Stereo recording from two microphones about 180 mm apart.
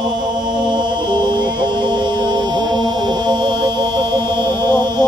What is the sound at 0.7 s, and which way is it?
Mantra, 25° right (ahead or behind).